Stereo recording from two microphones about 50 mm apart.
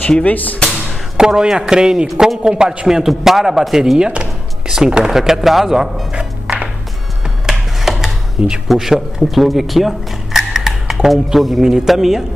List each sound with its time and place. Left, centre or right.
0.2 s speech: left
1.1 s a man's voice: centre
7.4 s a sound: centre
8.6 s a man's voice: centre